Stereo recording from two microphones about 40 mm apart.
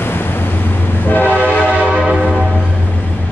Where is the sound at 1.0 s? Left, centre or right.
Left.